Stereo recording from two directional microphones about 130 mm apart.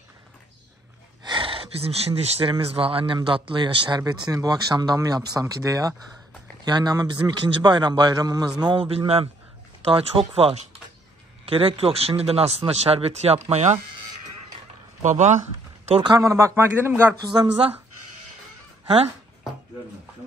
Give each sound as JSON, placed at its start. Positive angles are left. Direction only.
{"t": 1.2, "sound": "speech", "side_deg": -40}
{"t": 15.0, "sound": "speech", "side_deg": -65}
{"t": 16.0, "sound": "speech", "side_deg": -25}
{"t": 17.3, "sound": "speech", "side_deg": -35}